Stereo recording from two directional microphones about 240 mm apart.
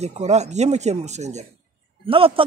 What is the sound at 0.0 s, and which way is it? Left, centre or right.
Speech, right.